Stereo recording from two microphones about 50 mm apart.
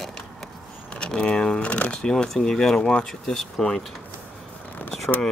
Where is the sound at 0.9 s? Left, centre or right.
Centre.